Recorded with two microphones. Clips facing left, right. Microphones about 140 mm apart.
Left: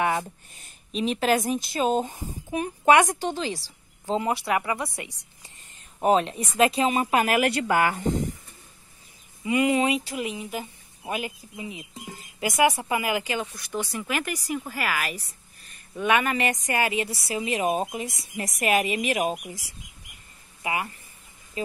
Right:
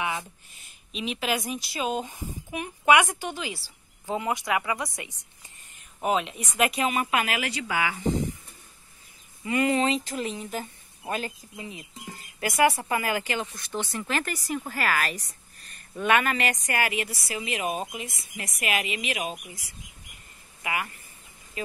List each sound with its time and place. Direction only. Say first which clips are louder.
0.0 s speech: left 6 dB; 50° left (ahead or behind)
4.1 s speech: left 2 dB; 30° left (ahead or behind)
4.8 s a woman's voice: left 2 dB; 20° right (ahead or behind)
6.0 s speech: left 5 dB; 35° left (ahead or behind)
7.3 s a woman's voice: left 7 dB; 50° left (ahead or behind)
9.4 s a woman's voice: left 2 dB; 15° left (ahead or behind); by 19.3 s 45° left (ahead or behind)
20.6 s speech: left 2 dB; 25° left (ahead or behind)